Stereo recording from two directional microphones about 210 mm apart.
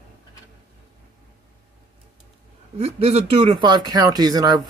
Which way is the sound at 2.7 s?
30° right (ahead or behind).